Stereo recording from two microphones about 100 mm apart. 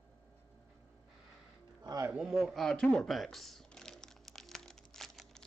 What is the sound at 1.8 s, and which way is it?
Speech, 35° right (ahead or behind).